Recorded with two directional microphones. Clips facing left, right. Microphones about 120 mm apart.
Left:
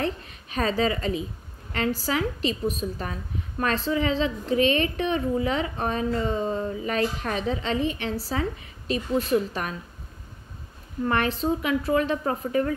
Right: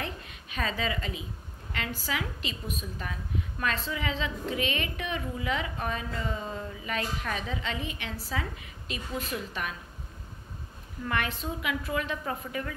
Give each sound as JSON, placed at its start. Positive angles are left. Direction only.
{"t": 0.0, "sound": "a sound", "side_deg": 35}
{"t": 1.7, "sound": "a woman's voice", "side_deg": 35}
{"t": 11.1, "sound": "a woman's voice", "side_deg": 35}